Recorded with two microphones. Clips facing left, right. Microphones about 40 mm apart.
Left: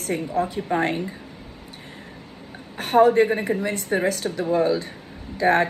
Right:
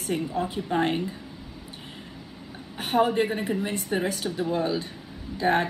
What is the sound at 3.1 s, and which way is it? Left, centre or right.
A woman's voice, left.